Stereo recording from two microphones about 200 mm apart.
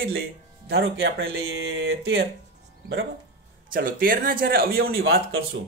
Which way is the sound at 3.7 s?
45° right (ahead or behind).